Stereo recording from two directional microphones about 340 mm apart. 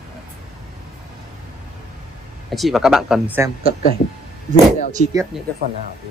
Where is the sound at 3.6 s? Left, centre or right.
Left.